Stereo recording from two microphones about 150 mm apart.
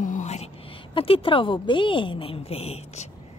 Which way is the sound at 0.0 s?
55° left (ahead or behind).